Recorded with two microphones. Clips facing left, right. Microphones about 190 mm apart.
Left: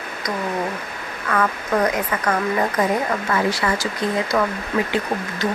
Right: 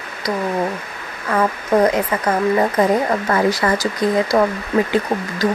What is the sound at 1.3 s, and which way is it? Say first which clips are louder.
Speech: right 4 dB; 25° right (ahead or behind).